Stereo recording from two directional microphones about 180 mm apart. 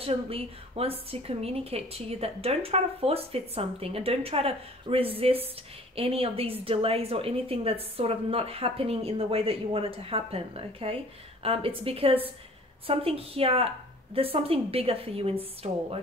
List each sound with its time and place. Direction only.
0.0 s a woman's voice: 30° right (ahead or behind)